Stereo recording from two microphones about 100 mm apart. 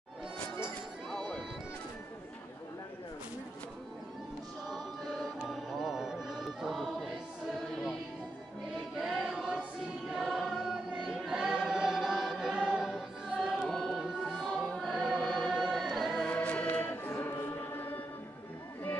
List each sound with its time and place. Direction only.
1.1 s music: 5° left (ahead or behind)
4.6 s music: centre (ahead or behind)
8.7 s choir: 5° right (ahead or behind)
16.3 s choir: 15° left (ahead or behind)